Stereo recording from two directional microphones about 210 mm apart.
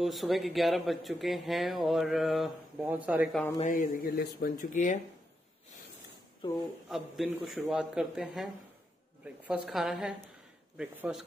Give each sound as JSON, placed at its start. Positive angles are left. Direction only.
{"t": 0.0, "sound": "speech", "side_deg": 0}
{"t": 3.5, "sound": "a man's voice", "side_deg": 40}
{"t": 6.4, "sound": "speech", "side_deg": 20}
{"t": 6.9, "sound": "speech", "side_deg": 0}